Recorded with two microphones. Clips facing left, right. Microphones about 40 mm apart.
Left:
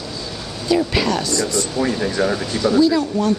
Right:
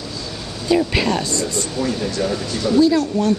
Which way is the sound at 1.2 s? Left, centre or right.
Right.